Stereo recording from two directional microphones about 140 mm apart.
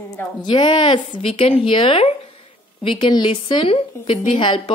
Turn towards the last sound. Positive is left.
turn(degrees=35)  # may be behind; listen again after turning